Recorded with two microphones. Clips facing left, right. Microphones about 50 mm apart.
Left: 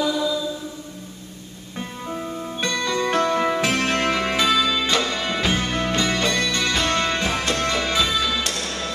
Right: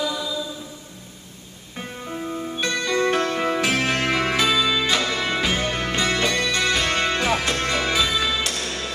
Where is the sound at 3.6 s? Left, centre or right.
Centre.